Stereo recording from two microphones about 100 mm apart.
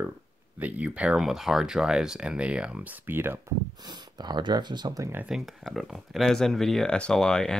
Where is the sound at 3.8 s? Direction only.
45° right (ahead or behind).